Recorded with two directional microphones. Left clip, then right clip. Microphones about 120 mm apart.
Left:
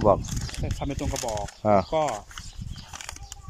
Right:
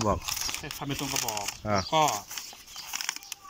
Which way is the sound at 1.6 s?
40° left (ahead or behind).